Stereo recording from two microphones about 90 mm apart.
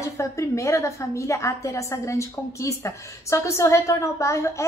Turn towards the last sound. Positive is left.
turn(degrees=35)  # may be behind; listen again after turning